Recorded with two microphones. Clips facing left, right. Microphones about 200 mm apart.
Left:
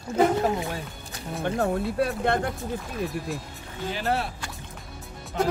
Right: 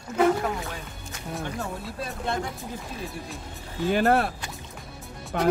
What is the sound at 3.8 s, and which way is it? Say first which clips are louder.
Speech: right 6 dB; 55° right (ahead or behind).